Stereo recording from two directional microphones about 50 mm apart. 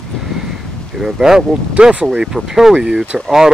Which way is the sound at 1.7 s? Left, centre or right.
Right.